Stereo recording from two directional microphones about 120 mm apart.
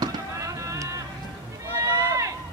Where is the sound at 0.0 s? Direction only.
25° right (ahead or behind).